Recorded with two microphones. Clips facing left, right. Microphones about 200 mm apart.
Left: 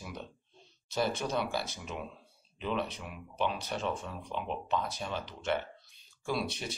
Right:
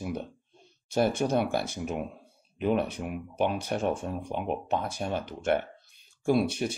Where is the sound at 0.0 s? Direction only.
55° right (ahead or behind).